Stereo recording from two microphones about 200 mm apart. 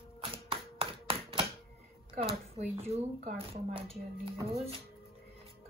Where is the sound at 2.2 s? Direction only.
30° right (ahead or behind).